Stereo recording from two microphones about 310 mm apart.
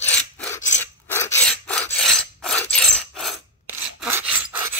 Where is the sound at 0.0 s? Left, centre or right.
Centre.